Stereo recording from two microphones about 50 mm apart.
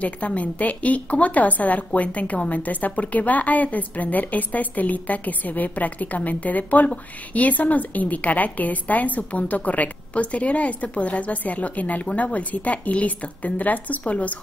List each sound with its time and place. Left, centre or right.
0.0 s a woman's voice: left